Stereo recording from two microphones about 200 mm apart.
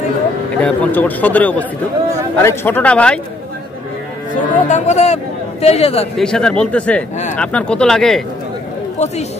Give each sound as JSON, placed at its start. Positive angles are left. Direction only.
{"t": 0.6, "sound": "a man's voice", "side_deg": 5}
{"t": 4.6, "sound": "speech", "side_deg": 35}
{"t": 6.1, "sound": "speech", "side_deg": 5}